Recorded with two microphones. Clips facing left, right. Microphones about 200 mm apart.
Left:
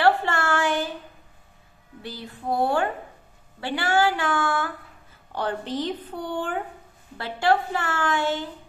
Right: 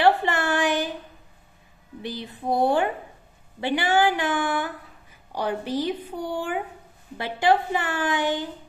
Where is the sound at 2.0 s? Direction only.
20° right (ahead or behind).